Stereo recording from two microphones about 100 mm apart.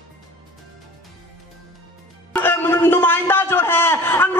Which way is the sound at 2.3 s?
20° left (ahead or behind).